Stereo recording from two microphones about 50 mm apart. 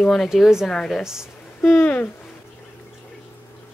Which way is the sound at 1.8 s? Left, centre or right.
Left.